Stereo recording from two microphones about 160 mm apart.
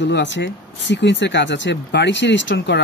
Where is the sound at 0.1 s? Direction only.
90° left.